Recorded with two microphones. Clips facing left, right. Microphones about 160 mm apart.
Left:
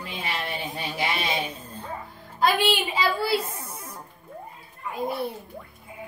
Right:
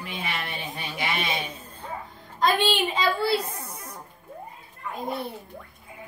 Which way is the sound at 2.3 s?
5° left (ahead or behind).